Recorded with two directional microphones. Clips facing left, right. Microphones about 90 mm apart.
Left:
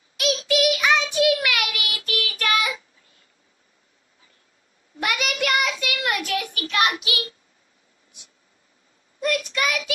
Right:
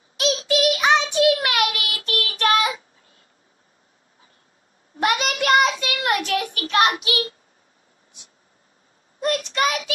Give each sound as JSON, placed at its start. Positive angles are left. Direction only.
{"t": 0.2, "sound": "child singing", "side_deg": -30}
{"t": 4.9, "sound": "child singing", "side_deg": -30}
{"t": 9.2, "sound": "child singing", "side_deg": -35}